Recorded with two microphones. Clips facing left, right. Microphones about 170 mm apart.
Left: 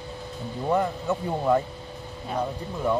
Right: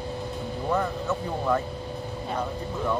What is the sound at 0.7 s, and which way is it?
Speech, 15° left (ahead or behind).